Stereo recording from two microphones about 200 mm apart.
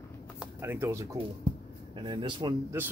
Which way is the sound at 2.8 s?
10° right (ahead or behind).